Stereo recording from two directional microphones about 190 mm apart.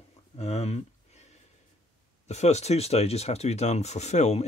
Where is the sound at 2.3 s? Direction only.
35° left (ahead or behind).